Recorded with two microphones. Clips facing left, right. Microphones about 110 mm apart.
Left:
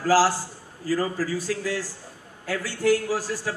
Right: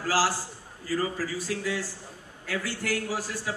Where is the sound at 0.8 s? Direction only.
40° left (ahead or behind).